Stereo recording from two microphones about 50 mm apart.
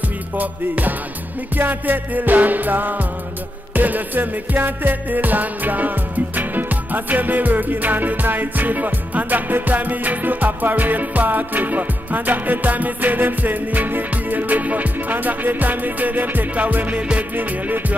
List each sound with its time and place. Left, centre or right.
0.4 s music: right